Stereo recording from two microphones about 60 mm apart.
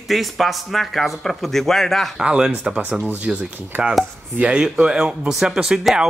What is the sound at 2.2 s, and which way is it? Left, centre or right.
Speech, centre.